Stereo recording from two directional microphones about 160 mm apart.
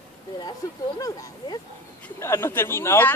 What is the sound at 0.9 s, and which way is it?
Speech, 20° left (ahead or behind).